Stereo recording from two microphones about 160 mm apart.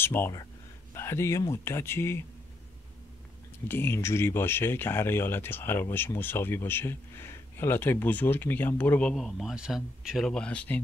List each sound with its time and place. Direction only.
0.0 s speech: 15° left (ahead or behind)
3.6 s speech: 15° left (ahead or behind)
9.1 s speech: centre (ahead or behind)